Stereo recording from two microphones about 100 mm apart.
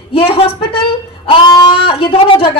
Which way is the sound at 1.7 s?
65° left (ahead or behind).